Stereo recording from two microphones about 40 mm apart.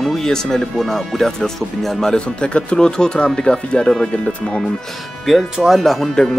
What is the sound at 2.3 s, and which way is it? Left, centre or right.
Speech, left.